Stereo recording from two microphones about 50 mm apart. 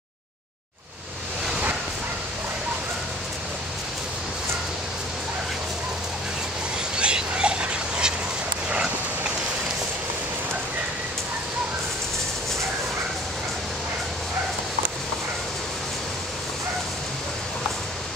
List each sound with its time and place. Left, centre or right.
7.0 s dog: centre